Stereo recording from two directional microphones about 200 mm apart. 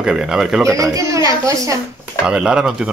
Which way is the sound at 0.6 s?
15° right (ahead or behind).